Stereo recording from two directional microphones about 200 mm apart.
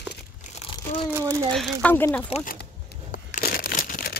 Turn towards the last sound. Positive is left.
turn(degrees=45)  # may be behind; listen again after turning